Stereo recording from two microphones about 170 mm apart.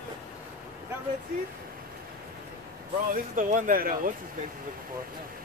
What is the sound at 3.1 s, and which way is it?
Speech, 55° right (ahead or behind).